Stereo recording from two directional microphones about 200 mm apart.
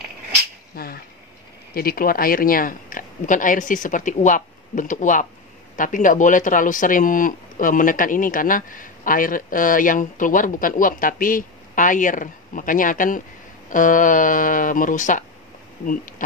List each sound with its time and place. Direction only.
0.7 s speech: 50° left (ahead or behind)